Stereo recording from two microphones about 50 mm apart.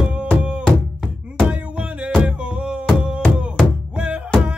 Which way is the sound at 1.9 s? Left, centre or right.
Right.